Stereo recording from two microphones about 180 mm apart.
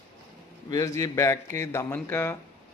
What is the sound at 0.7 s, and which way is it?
A man's voice, 20° left (ahead or behind).